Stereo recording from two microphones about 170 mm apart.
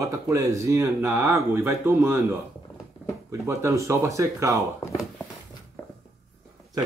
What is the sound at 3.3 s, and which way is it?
Speech, 15° right (ahead or behind).